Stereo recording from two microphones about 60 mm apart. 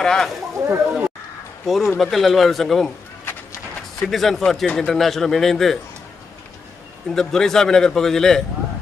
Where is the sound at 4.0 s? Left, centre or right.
Centre.